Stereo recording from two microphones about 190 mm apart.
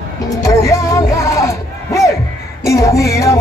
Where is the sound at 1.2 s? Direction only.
15° left (ahead or behind).